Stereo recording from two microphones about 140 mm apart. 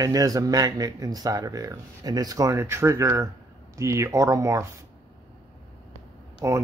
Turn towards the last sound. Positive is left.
turn(degrees=-20)  # may be behind; listen again after turning